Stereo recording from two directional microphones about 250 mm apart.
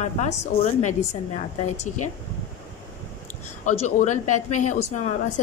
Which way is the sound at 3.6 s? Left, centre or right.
Left.